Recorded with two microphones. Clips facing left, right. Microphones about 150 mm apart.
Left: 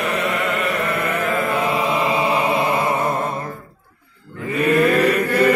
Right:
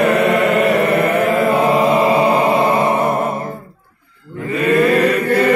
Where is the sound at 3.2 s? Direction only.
25° right (ahead or behind).